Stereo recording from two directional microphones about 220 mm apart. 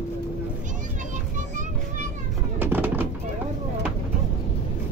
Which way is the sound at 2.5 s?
10° right (ahead or behind).